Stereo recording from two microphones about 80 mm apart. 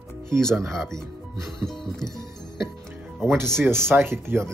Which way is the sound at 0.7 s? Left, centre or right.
Centre.